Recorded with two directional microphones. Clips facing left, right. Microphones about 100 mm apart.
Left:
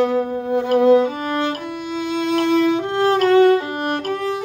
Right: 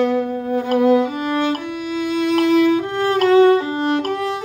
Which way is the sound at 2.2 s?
30° left (ahead or behind).